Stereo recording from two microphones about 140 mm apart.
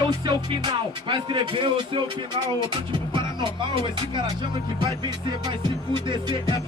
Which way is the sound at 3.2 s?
35° right (ahead or behind).